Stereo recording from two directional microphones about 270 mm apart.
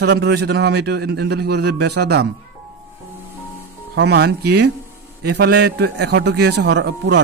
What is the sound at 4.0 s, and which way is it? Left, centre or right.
A man's voice, right.